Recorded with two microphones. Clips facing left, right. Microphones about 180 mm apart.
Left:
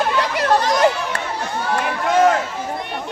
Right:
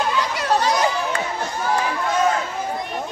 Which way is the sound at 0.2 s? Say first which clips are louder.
Left 3 dB; 55° left (ahead or behind).